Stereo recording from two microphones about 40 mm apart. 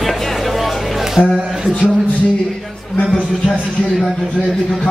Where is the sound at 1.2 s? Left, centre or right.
Left.